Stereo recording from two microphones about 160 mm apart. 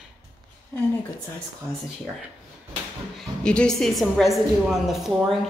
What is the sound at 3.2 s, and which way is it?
A woman's voice, 5° left (ahead or behind).